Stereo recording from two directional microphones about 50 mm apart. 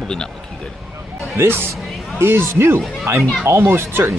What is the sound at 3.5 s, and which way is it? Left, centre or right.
Speech, right.